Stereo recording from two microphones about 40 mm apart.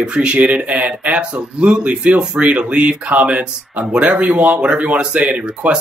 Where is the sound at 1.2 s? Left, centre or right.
Right.